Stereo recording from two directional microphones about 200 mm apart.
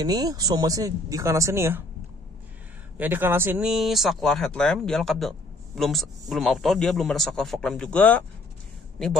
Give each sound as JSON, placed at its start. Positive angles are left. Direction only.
{"t": 0.0, "sound": "speech", "side_deg": -20}
{"t": 3.0, "sound": "a man's voice", "side_deg": -10}